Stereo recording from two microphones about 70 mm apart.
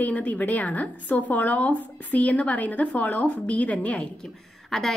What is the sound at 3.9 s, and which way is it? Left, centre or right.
Speech, centre.